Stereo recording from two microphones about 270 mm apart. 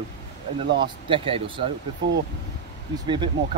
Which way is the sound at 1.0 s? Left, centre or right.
Centre.